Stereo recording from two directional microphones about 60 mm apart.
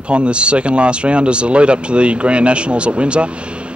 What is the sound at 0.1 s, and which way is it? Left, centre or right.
Speech, centre.